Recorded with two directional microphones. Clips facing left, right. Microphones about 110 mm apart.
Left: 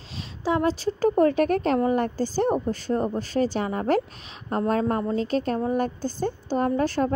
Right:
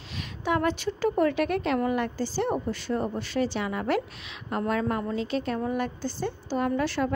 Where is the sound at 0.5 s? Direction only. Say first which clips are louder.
Left 3 dB; 30° left (ahead or behind).